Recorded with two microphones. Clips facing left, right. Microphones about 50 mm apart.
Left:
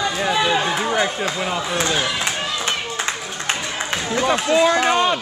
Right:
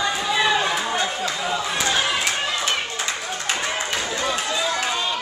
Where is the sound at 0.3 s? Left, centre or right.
Centre.